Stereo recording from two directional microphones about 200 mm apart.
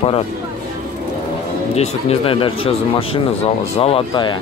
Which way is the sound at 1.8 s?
30° left (ahead or behind).